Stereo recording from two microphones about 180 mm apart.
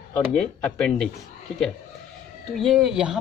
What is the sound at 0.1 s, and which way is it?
Speech, 10° left (ahead or behind).